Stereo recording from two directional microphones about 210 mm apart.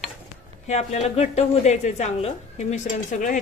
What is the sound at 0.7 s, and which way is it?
Speech, 30° left (ahead or behind).